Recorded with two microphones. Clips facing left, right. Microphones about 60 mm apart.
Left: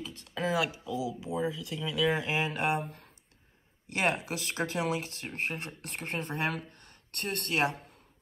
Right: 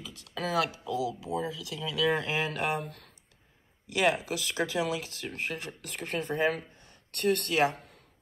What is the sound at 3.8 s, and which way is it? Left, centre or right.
Speech, left.